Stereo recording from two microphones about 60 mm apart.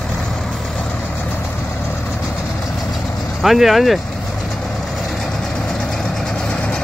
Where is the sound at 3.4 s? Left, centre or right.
Centre.